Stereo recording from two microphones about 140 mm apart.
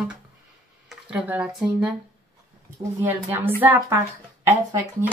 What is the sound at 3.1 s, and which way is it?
A woman's voice, 15° right (ahead or behind).